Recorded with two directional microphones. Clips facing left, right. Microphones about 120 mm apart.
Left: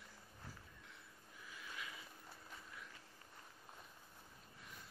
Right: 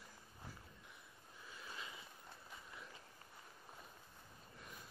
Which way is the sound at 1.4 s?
30° right (ahead or behind).